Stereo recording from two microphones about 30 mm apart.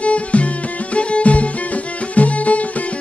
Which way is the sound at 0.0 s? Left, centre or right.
Left.